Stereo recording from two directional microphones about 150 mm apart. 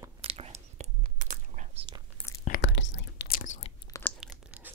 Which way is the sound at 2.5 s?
65° left (ahead or behind).